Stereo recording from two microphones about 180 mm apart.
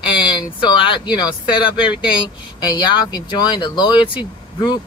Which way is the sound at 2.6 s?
25° left (ahead or behind).